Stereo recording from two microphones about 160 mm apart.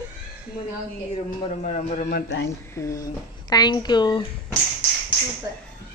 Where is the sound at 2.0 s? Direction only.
85° left.